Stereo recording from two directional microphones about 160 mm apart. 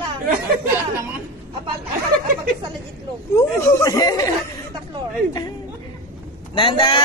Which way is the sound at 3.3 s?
20° left (ahead or behind).